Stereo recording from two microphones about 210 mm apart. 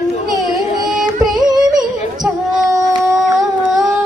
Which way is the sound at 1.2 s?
20° right (ahead or behind).